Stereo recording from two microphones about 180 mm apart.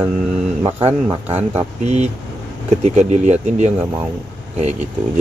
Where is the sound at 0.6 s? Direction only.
30° right (ahead or behind).